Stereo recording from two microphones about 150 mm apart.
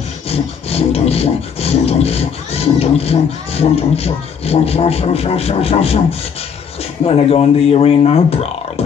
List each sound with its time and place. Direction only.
0.3 s wood: 40° left (ahead or behind)